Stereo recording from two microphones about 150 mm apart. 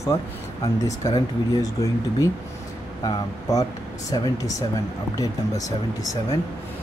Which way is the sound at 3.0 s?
25° left (ahead or behind).